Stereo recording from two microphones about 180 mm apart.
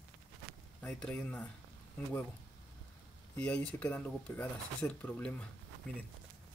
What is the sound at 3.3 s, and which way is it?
Speech, 5° left (ahead or behind).